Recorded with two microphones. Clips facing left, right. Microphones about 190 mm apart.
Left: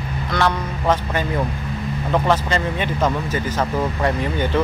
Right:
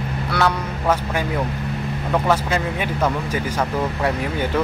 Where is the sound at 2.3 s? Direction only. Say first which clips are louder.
Left 1 dB; 10° right (ahead or behind).